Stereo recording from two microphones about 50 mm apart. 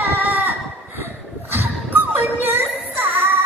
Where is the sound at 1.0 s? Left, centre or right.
Right.